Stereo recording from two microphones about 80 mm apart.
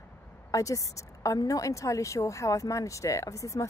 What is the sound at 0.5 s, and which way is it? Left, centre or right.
A woman's voice, left.